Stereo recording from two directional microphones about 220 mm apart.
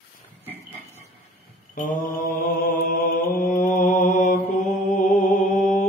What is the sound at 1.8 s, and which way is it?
Mantra, 40° left (ahead or behind).